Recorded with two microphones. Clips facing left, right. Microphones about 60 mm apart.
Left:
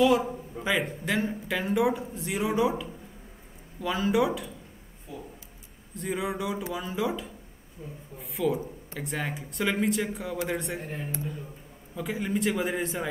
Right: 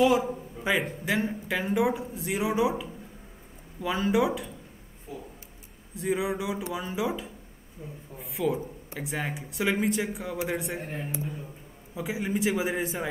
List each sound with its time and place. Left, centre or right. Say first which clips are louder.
0.0 s speech: even; centre
5.9 s a man's voice: right 2 dB; centre
10.9 s a man's voice: right 1 dB; centre